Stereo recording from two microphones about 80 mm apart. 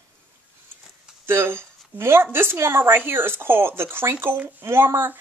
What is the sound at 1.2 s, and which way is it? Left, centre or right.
Speech, right.